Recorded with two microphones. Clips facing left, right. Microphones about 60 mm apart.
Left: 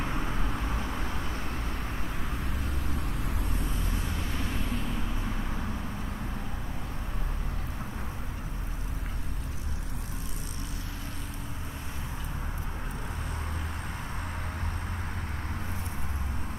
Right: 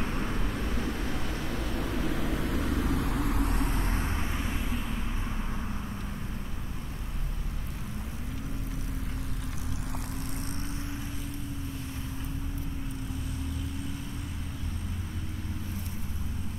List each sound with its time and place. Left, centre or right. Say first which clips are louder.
1.5 s vehicle: right 4 dB; right
4.3 s vehicle: even; centre